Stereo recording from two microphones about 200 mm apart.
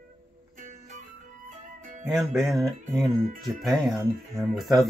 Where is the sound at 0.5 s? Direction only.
40° right (ahead or behind).